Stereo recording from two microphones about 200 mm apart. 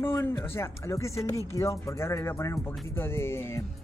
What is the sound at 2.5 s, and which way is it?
Speech, centre (ahead or behind).